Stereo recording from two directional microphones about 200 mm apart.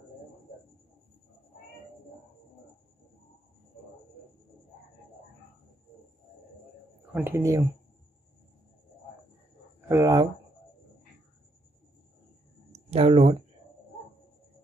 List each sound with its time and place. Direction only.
7.2 s speech: 10° right (ahead or behind)
9.8 s speech: 15° right (ahead or behind)
12.7 s speech: 30° right (ahead or behind)